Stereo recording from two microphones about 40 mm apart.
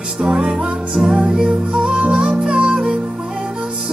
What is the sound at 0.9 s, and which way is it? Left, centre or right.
Music, centre.